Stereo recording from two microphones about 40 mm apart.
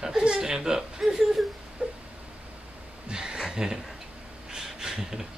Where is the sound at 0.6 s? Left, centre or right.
Centre.